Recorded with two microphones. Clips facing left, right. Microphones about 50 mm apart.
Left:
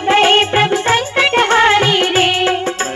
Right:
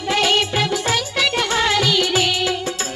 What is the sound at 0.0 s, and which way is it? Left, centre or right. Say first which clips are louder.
Music: left 7 dB; left.